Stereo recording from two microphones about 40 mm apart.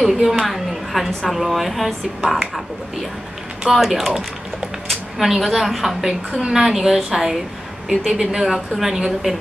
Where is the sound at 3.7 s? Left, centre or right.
Centre.